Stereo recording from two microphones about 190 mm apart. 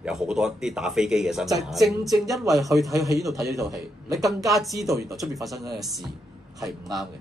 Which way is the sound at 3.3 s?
15° right (ahead or behind).